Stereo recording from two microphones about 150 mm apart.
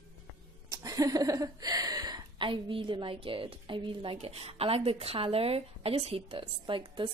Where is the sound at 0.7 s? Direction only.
25° right (ahead or behind).